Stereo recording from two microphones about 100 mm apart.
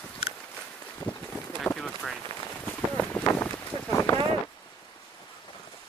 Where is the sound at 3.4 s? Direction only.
30° left (ahead or behind).